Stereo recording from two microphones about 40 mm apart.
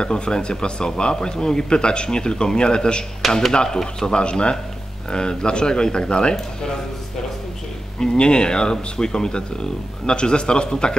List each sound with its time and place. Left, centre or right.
0.0 s speech: left
3.2 s a man's voice: centre
3.5 s speech: centre
8.0 s speech: centre